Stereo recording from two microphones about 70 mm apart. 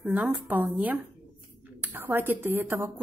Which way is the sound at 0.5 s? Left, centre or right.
Right.